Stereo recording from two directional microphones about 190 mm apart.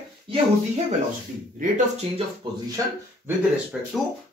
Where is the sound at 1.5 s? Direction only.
40° right (ahead or behind).